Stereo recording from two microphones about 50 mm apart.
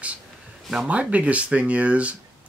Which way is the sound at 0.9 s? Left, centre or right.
Right.